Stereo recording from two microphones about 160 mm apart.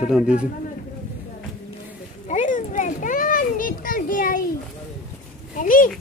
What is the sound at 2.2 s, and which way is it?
Children playing, 50° left (ahead or behind).